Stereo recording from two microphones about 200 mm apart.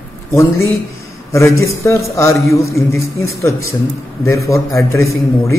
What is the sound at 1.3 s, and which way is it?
A man's voice, 15° left (ahead or behind).